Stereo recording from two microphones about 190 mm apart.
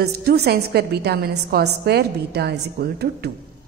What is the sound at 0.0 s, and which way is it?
A woman's voice, 55° right (ahead or behind).